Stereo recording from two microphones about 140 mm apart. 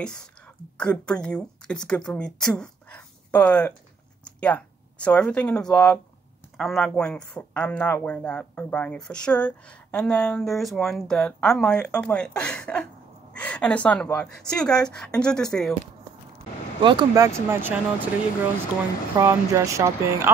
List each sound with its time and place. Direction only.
0.0 s a woman's voice: 5° left (ahead or behind)
16.8 s speech: 30° right (ahead or behind)
19.1 s speech: 20° right (ahead or behind)